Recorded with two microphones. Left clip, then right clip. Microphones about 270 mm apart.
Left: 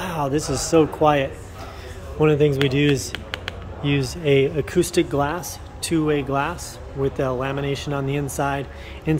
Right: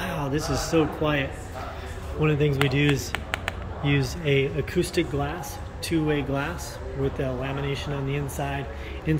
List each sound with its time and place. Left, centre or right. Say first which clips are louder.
0.0 s speech: left 5 dB; centre